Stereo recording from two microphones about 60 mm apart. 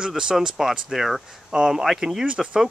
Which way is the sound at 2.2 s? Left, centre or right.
Centre.